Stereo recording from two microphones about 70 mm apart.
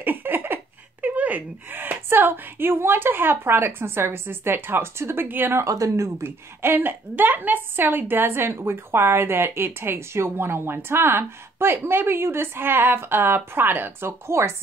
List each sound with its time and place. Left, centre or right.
0.0 s a sound: right
1.0 s a woman's voice: right
5.6 s a woman's voice: right